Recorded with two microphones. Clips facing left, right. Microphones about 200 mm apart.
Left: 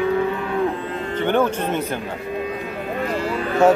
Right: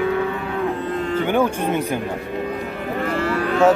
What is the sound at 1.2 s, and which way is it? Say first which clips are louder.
Speech: left 2 dB; 10° right (ahead or behind).